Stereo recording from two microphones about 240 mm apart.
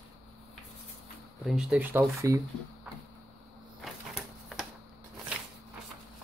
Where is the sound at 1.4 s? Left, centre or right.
Centre.